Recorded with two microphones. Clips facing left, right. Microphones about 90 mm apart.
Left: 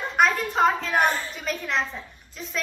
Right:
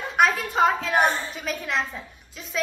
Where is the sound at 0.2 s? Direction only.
Centre (ahead or behind).